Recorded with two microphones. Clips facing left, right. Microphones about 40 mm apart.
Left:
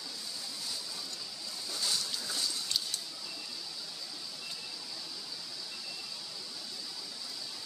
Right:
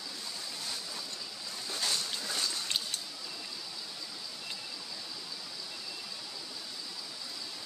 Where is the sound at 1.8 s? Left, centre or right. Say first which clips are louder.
Right 1 dB; right.